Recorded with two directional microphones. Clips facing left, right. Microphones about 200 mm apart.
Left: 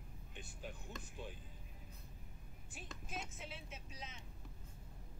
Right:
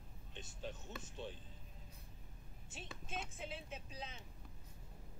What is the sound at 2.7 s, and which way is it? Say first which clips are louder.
Speech: right 1 dB; 25° right (ahead or behind).